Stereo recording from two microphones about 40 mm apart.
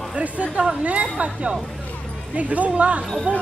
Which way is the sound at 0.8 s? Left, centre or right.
Right.